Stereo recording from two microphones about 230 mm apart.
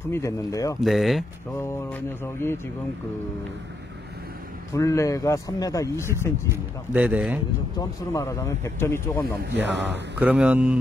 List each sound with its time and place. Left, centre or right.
0.1 s a man's voice: centre
0.7 s a man's voice: centre
4.7 s a man's voice: centre
6.5 s speech: centre
8.1 s a man's voice: centre
9.7 s speech: right
10.1 s speech: centre